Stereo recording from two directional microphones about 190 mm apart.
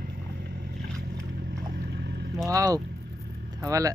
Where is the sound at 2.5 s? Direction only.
15° right (ahead or behind).